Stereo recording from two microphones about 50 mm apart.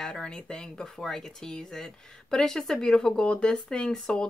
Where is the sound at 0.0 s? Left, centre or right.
Centre.